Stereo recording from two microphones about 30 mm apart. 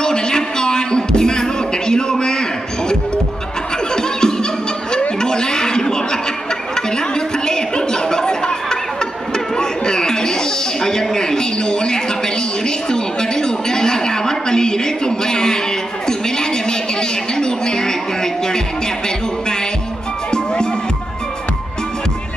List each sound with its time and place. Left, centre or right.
0.0 s music: left
3.9 s laughter: left
5.2 s chuckle: left
7.2 s a sound: left